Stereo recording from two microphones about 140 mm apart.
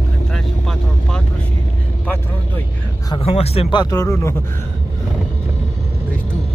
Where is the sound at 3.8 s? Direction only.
25° left (ahead or behind).